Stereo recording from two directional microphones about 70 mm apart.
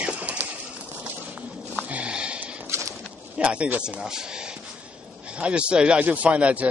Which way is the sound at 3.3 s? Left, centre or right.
Centre.